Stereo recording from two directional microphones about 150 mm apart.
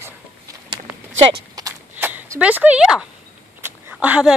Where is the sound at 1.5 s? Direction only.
25° right (ahead or behind).